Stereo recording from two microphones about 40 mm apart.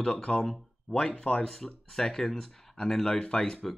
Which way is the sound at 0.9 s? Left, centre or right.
Left.